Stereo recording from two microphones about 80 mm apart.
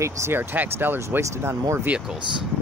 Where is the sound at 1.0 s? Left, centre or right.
Right.